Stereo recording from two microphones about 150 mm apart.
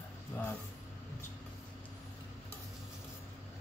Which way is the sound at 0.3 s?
15° left (ahead or behind).